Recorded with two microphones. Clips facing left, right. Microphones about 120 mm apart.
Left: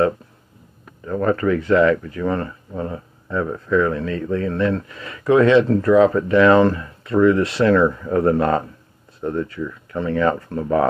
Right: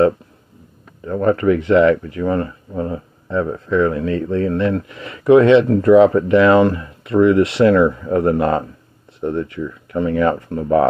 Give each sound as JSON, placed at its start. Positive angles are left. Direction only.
{"t": 1.0, "sound": "speech", "side_deg": -25}